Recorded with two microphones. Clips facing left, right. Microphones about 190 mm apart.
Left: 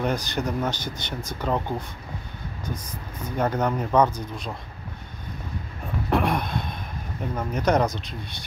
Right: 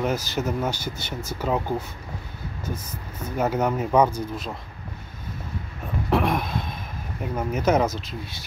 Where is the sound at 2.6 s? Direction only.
5° right (ahead or behind).